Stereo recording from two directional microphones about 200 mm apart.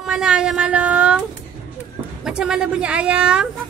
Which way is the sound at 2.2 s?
Centre (ahead or behind).